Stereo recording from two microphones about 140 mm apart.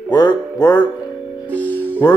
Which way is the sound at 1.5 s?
10° left (ahead or behind).